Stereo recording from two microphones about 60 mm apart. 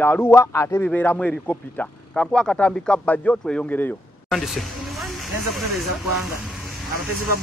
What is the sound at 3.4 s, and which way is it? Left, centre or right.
Speech, centre.